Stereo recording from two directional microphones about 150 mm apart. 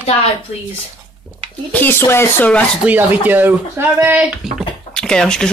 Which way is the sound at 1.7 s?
15° left (ahead or behind).